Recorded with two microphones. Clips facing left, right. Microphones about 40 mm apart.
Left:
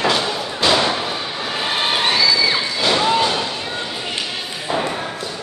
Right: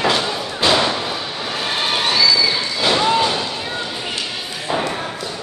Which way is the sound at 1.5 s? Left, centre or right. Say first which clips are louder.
Left 1 dB; centre.